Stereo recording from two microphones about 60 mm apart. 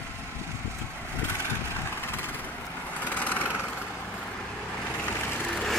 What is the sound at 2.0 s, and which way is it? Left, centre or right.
Vehicle, left.